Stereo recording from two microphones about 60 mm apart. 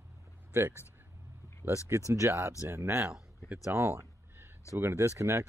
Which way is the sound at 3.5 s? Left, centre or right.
Right.